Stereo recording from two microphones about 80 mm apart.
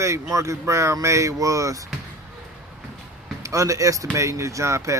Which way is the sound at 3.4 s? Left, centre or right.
Right.